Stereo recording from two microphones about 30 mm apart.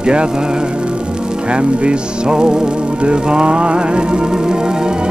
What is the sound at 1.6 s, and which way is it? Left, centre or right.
Music, right.